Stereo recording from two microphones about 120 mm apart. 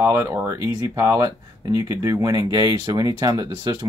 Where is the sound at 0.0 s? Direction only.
25° right (ahead or behind).